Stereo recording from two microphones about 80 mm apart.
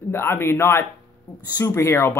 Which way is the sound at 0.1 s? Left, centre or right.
Left.